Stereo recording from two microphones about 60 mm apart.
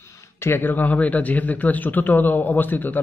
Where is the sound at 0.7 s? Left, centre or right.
Left.